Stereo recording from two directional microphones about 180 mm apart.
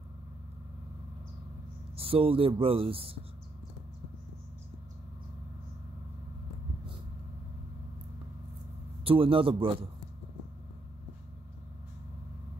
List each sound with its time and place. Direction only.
2.0 s speech: 30° right (ahead or behind)
9.0 s a man's voice: 30° right (ahead or behind)